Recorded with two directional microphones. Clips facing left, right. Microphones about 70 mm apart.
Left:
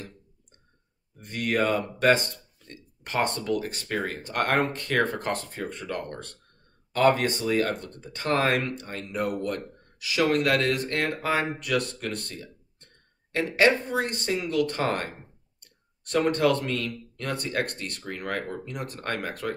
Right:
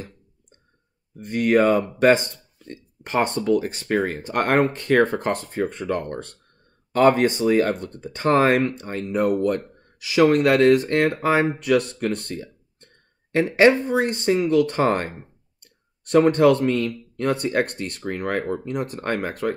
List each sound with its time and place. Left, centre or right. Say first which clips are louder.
1.2 s speech: right 8 dB; right